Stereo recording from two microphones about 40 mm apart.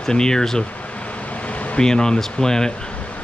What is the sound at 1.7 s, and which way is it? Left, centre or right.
Speech, centre.